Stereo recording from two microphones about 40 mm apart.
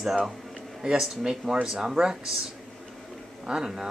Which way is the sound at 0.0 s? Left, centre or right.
Centre.